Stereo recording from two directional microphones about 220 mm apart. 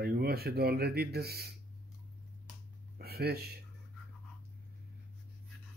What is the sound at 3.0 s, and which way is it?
Speech, 45° right (ahead or behind).